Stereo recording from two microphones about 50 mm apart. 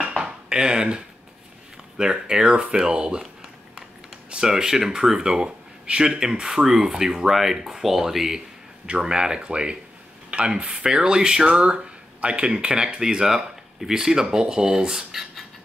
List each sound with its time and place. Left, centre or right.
0.2 s dishes: centre
2.0 s speech: centre
4.3 s speech: centre
8.8 s speech: centre